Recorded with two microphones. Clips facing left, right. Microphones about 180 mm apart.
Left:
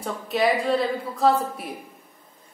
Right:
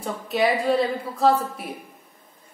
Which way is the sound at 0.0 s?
Centre (ahead or behind).